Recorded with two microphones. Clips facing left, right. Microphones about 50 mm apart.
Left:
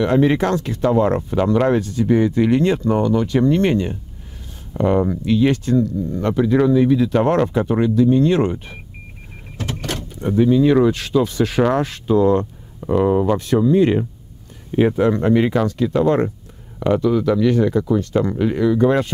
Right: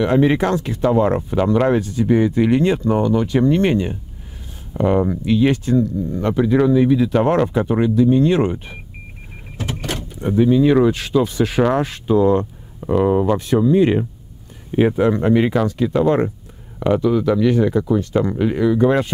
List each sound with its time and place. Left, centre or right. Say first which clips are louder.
0.0 s speech: even; centre